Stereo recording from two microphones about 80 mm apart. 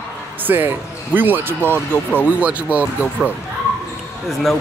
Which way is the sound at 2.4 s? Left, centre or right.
Centre.